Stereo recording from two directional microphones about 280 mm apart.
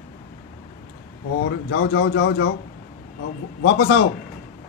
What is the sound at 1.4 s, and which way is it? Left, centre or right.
Speech, left.